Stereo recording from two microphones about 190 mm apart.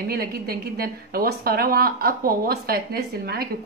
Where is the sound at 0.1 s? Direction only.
50° right (ahead or behind).